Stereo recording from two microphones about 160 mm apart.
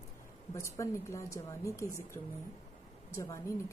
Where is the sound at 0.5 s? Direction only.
20° left (ahead or behind).